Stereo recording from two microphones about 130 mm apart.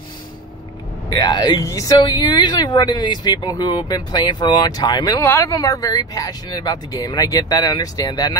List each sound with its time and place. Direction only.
1.1 s speech: 30° left (ahead or behind)
5.2 s speech: 20° left (ahead or behind)